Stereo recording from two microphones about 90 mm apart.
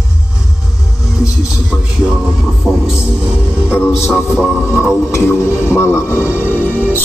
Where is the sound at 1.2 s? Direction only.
10° right (ahead or behind).